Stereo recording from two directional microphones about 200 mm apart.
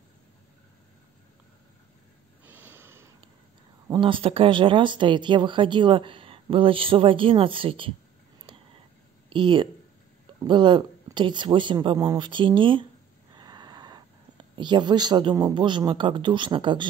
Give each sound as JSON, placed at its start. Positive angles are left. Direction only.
{"t": 2.4, "sound": "snort", "side_deg": -10}
{"t": 3.9, "sound": "speech", "side_deg": -25}
{"t": 9.3, "sound": "speech", "side_deg": -25}
{"t": 13.3, "sound": "a sound", "side_deg": -20}
{"t": 14.5, "sound": "speech", "side_deg": -20}